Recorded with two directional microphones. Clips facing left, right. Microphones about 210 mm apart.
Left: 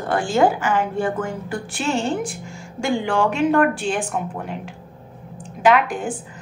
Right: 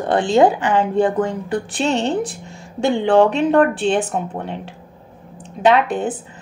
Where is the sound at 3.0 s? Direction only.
20° right (ahead or behind).